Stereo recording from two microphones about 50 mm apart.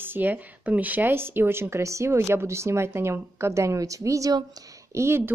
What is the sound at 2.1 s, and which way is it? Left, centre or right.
A woman's voice, right.